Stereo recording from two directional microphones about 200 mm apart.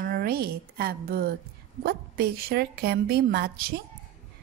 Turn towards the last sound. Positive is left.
turn(degrees=-50)  # may be behind; listen again after turning